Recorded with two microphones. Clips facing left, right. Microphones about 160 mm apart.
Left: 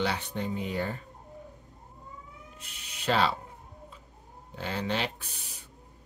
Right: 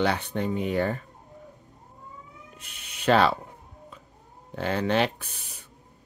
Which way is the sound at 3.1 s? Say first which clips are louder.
Right 6 dB; 60° right (ahead or behind).